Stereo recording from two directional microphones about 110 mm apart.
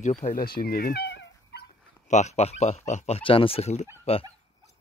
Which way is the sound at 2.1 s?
90° left.